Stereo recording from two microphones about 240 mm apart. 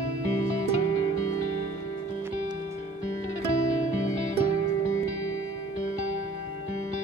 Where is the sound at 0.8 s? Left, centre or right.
Left.